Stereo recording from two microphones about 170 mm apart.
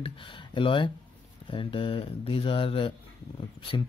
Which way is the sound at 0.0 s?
30° left (ahead or behind).